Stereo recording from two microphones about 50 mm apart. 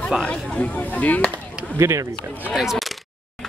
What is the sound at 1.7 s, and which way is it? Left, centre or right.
Speech, right.